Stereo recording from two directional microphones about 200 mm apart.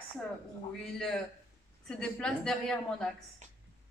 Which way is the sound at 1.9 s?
5° left (ahead or behind).